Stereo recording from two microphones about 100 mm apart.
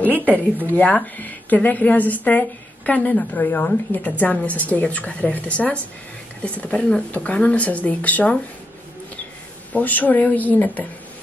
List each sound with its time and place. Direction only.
0.0 s a woman's voice: 15° left (ahead or behind)
9.7 s a woman's voice: 15° left (ahead or behind)